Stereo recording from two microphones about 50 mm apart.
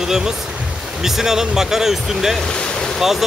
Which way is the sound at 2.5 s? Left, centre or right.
Centre.